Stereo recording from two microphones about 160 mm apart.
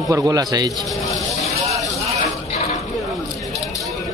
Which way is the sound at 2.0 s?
Centre (ahead or behind).